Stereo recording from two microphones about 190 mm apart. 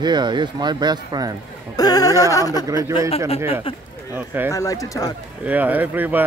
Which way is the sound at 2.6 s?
15° right (ahead or behind).